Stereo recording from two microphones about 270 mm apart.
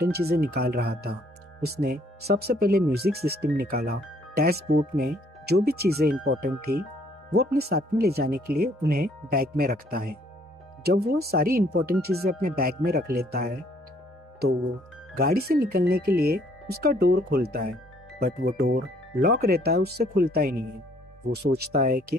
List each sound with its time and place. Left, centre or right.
0.0 s speech: right
15.1 s speech: right